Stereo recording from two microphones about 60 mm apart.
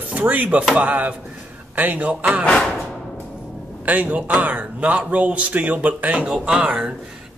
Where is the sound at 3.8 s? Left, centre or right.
Right.